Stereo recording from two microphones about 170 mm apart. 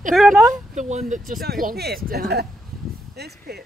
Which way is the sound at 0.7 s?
45° right (ahead or behind).